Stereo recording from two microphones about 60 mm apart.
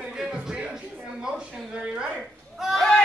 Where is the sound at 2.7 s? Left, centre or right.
Centre.